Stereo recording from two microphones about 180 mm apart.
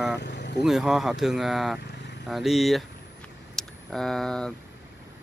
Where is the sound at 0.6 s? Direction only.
Centre (ahead or behind).